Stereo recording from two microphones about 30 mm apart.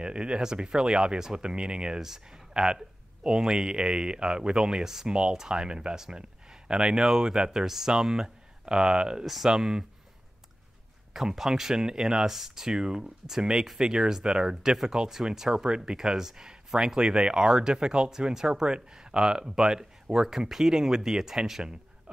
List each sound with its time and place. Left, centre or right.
0.0 s speech: right
2.0 s speech: centre
5.0 s speech: right
9.2 s speech: centre
11.1 s speech: centre
19.4 s speech: centre